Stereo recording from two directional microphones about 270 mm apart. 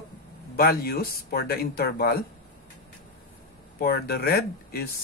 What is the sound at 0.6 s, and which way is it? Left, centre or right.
Speech, left.